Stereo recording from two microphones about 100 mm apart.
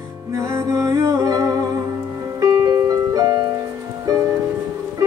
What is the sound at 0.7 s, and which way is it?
Music, 30° right (ahead or behind).